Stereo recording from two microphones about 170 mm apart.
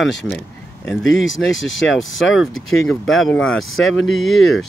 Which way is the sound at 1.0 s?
90° left.